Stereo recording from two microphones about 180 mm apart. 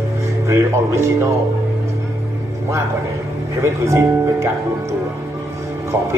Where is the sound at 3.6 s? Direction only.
15° right (ahead or behind).